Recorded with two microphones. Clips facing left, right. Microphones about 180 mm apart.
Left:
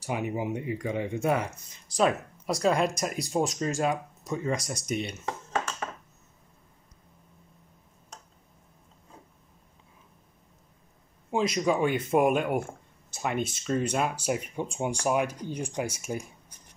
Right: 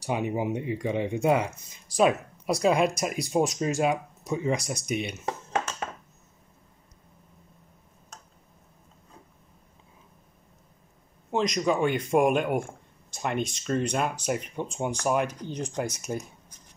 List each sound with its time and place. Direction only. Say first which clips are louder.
0.1 s speech: right 3 dB; 25° right (ahead or behind)
11.2 s speech: even; 5° left (ahead or behind)